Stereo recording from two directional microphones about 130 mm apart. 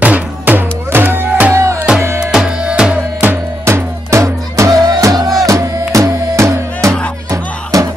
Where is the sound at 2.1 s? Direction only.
5° right (ahead or behind).